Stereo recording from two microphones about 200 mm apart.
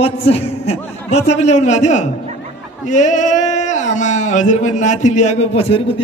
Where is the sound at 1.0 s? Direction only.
35° left (ahead or behind).